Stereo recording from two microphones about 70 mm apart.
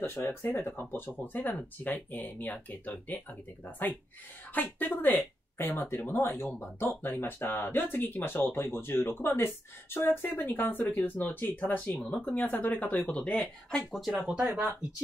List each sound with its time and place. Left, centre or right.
0.0 s speech: left
4.7 s speech: left
11.9 s speech: centre
13.9 s speech: centre
14.4 s speech: right